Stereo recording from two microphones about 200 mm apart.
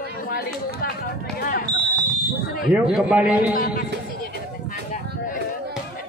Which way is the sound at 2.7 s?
5° right (ahead or behind).